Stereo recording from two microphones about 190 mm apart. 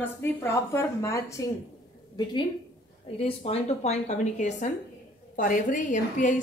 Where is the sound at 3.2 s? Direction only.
30° left (ahead or behind).